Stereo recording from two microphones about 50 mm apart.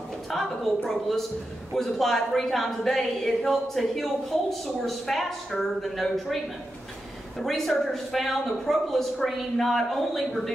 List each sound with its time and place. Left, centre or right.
0.3 s a woman's voice: centre